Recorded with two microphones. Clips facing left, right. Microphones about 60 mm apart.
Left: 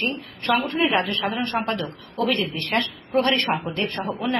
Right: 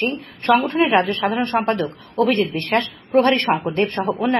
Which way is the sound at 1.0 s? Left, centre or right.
Right.